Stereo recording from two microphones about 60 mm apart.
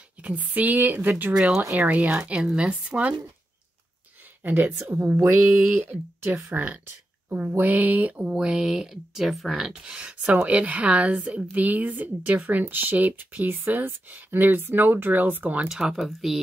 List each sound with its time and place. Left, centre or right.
0.2 s a woman's voice: right
1.3 s speech: centre
1.7 s speech: right
4.4 s speech: right
4.8 s a woman's voice: right
5.8 s a woman's voice: right; by 9.6 s centre
9.6 s speech: centre; by 15.7 s right
16.0 s speech: centre